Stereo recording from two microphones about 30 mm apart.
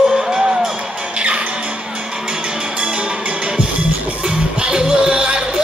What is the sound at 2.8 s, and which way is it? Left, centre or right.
Music, right.